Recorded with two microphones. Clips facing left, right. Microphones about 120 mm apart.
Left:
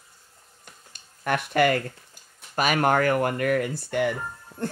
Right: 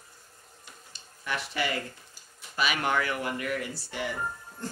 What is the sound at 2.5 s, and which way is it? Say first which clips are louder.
Speech: left 6 dB; 45° left (ahead or behind).